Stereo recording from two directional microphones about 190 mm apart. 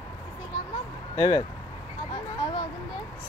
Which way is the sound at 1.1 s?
20° left (ahead or behind).